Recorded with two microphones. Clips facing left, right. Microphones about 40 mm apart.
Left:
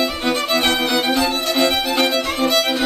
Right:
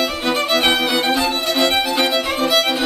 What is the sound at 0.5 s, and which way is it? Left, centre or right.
Music, centre.